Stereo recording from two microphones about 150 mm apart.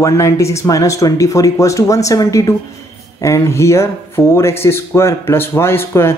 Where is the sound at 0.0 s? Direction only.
20° left (ahead or behind).